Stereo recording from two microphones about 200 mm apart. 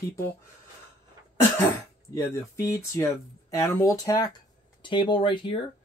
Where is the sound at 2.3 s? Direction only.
15° left (ahead or behind).